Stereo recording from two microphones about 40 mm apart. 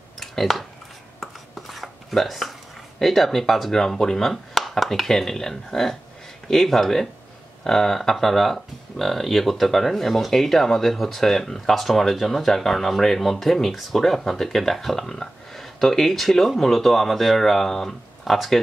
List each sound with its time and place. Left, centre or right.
0.2 s speech: centre
1.2 s a sound: centre
3.0 s speech: centre